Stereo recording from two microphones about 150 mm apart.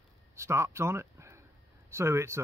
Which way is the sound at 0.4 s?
20° right (ahead or behind).